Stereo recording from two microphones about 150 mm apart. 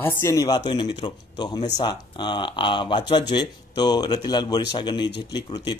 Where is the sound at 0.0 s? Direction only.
20° left (ahead or behind).